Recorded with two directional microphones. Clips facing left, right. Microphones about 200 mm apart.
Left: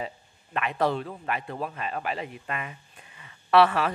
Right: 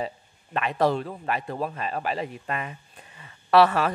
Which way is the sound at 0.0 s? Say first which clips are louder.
Right 4 dB; 35° right (ahead or behind).